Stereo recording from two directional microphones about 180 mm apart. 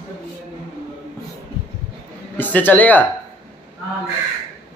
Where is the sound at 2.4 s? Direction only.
10° left (ahead or behind).